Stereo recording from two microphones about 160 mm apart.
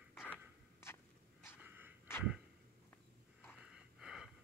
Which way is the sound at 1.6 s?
10° right (ahead or behind).